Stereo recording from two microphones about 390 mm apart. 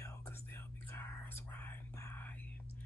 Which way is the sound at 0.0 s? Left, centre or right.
Centre.